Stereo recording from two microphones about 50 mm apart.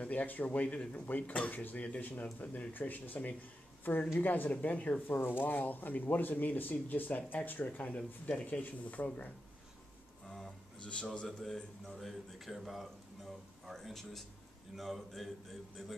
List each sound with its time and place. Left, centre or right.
0.0 s speech: left
5.0 s speech: left
10.8 s a man's voice: centre
11.8 s a man's voice: centre